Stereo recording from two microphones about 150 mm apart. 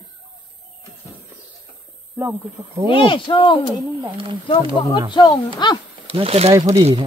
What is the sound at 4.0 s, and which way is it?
Speech, 30° right (ahead or behind).